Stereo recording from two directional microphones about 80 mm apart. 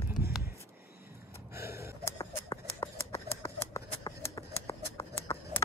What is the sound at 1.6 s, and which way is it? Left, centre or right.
Gasp, right.